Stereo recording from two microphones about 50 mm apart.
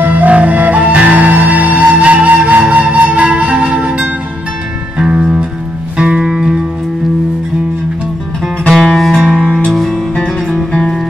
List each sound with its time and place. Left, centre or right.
0.0 s music: right
6.3 s music: centre
8.6 s music: centre